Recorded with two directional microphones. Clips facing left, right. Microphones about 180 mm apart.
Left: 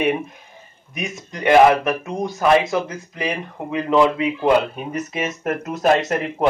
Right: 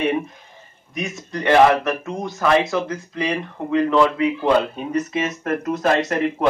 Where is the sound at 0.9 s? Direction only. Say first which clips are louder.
Right 2 dB; 15° left (ahead or behind).